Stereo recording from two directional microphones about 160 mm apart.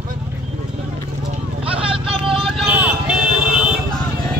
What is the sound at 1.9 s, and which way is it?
Vehicle, 35° right (ahead or behind).